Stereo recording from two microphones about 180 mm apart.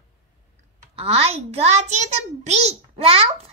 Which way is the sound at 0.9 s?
35° right (ahead or behind).